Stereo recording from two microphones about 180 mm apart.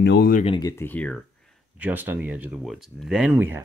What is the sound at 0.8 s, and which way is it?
Speech, 10° left (ahead or behind).